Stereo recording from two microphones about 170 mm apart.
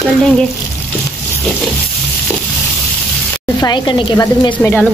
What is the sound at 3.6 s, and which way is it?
Speech, 25° left (ahead or behind).